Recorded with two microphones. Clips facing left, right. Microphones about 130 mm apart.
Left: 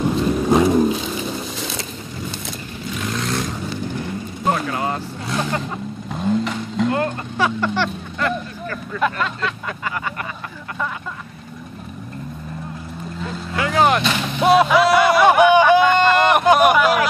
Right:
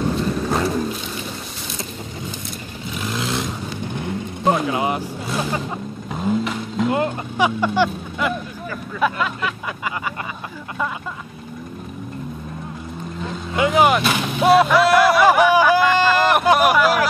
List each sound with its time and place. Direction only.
0.4 s vehicle: 15° left (ahead or behind)
3.0 s vehicle: 5° right (ahead or behind)
4.5 s vehicle: 15° right (ahead or behind)
6.9 s vehicle: 15° right (ahead or behind)
13.6 s vehicle: 20° right (ahead or behind)
13.8 s a sound: 5° right (ahead or behind)